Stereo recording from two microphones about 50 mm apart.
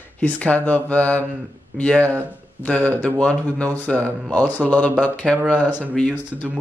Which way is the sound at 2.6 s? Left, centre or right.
Left.